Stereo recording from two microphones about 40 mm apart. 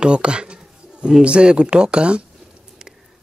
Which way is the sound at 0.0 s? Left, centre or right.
Right.